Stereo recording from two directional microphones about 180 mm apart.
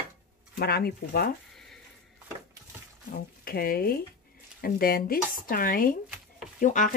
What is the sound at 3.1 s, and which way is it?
Speech, 55° left (ahead or behind).